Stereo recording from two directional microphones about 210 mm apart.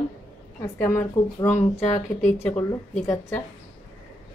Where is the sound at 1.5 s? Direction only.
30° left (ahead or behind).